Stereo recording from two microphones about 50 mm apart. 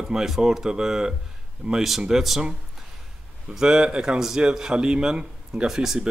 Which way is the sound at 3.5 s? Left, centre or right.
Centre.